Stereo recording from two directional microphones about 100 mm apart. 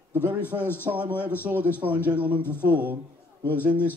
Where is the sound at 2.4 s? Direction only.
20° left (ahead or behind).